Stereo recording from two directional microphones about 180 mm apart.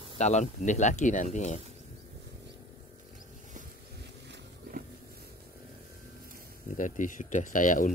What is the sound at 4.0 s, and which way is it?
Vehicle, 70° right (ahead or behind).